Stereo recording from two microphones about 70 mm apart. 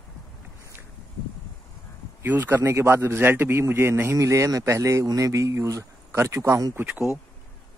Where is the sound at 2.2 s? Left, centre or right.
Right.